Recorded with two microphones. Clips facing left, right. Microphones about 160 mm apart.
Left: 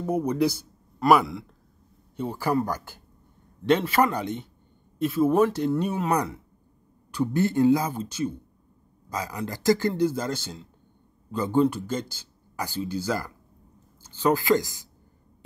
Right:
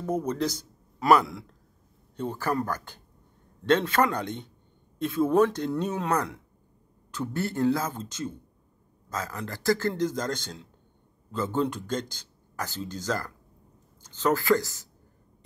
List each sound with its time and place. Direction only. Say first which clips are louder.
0.0 s speech: left 4 dB; 10° left (ahead or behind)
0.9 s a man's voice: left 1 dB; centre (ahead or behind); by 14.9 s 15° left (ahead or behind)